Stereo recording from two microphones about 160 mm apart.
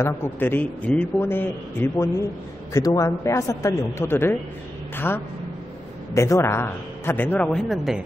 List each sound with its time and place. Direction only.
0.0 s a man's voice: 15° left (ahead or behind)